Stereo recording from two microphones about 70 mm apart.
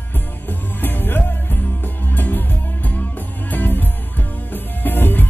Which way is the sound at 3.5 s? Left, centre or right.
Left.